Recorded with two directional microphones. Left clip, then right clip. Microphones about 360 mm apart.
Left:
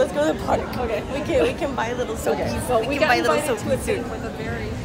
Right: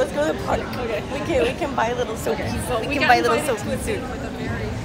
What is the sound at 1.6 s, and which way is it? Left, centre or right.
Speech, centre.